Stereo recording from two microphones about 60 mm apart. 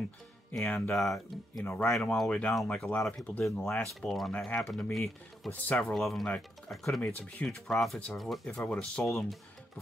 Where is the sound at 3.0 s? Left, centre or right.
Centre.